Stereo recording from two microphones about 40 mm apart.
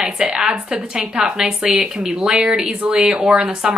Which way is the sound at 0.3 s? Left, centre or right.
Centre.